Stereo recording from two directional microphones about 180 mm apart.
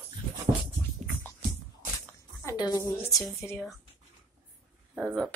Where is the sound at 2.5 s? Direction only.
20° left (ahead or behind).